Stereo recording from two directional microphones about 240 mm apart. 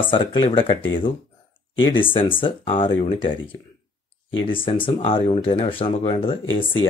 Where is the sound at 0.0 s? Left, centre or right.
Left.